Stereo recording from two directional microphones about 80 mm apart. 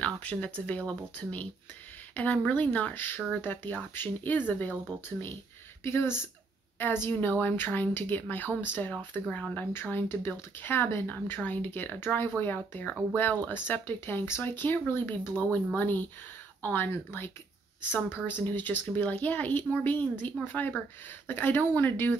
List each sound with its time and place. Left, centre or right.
0.0 s speech: centre